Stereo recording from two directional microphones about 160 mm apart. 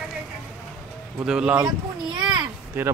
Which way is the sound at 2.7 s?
15° right (ahead or behind).